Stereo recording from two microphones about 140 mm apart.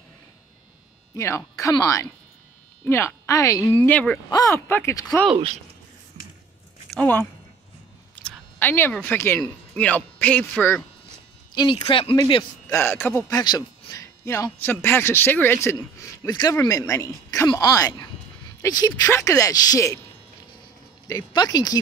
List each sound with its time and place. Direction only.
1.1 s a man's voice: 20° left (ahead or behind)
4.3 s a man's voice: 20° left (ahead or behind)
6.9 s a man's voice: 10° left (ahead or behind)
11.5 s speech: 35° left (ahead or behind)
12.6 s speech: 15° left (ahead or behind)
13.4 s a man's voice: 30° left (ahead or behind)
21.1 s a man's voice: 30° left (ahead or behind)